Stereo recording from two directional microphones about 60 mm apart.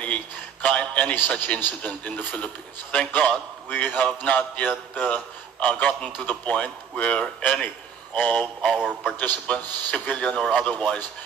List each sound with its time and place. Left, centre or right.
0.0 s a man's voice: left